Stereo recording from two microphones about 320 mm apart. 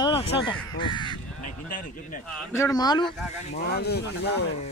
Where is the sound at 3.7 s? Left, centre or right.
Left.